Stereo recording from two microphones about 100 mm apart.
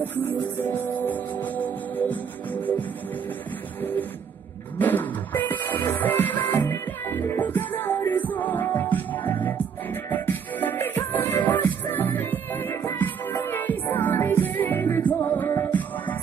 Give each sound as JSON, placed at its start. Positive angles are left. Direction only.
{"t": 0.0, "sound": "music", "side_deg": 20}
{"t": 4.7, "sound": "music", "side_deg": 20}